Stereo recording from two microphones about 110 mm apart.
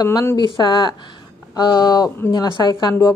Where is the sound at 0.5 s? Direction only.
40° left (ahead or behind).